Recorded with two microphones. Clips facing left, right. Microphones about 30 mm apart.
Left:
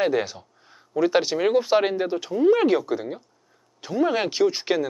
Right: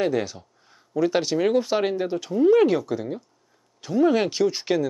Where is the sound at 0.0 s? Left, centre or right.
Centre.